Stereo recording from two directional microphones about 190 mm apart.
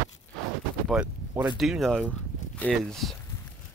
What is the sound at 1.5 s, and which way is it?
Speech, centre (ahead or behind).